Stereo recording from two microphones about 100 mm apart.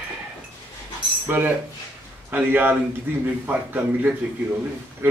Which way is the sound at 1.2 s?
20° right (ahead or behind).